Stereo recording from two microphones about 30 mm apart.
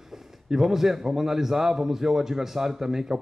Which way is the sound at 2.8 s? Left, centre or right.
Centre.